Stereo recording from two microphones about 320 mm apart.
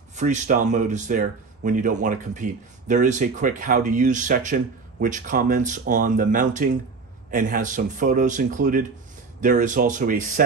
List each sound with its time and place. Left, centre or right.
0.1 s speech: right